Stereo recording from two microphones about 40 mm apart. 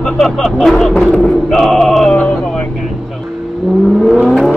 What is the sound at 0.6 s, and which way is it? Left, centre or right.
Male singing, centre.